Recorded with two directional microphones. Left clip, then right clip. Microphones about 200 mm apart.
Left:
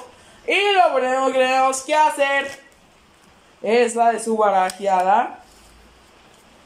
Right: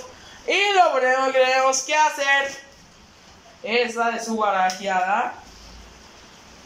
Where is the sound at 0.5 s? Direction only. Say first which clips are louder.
Left 1 dB; 5° left (ahead or behind).